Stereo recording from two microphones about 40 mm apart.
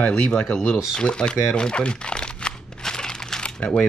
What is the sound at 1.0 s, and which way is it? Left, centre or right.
Crumpling, left.